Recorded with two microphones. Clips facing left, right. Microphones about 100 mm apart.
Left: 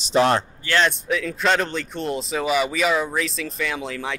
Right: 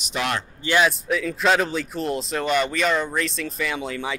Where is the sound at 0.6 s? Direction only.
5° right (ahead or behind).